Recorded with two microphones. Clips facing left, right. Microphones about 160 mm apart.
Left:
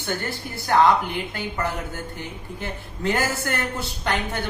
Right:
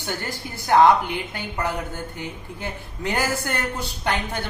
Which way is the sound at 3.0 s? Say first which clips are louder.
Left 1 dB; 15° right (ahead or behind).